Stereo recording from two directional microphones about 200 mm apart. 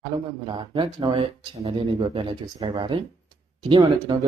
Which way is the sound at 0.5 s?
20° right (ahead or behind).